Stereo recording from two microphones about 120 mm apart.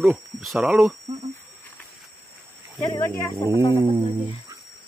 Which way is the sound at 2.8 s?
30° left (ahead or behind).